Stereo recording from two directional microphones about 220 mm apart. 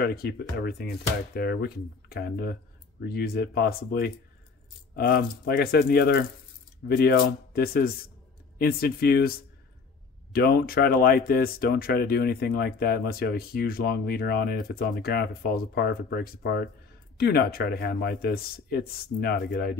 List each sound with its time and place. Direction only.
0.0 s speech: 45° left (ahead or behind)
10.3 s speech: 45° left (ahead or behind)